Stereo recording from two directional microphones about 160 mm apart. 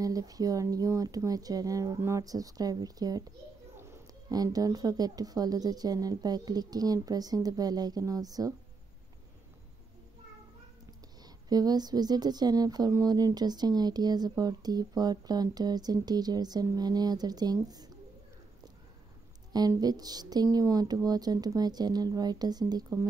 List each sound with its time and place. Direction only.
0.0 s a woman's voice: 20° right (ahead or behind)
11.2 s a woman's voice: 25° right (ahead or behind)
19.5 s a woman's voice: 25° right (ahead or behind)